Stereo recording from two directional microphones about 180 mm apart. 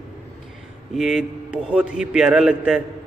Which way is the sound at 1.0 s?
Centre (ahead or behind).